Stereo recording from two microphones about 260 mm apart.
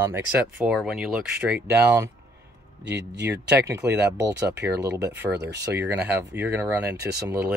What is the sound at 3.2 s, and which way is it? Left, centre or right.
Speech, centre.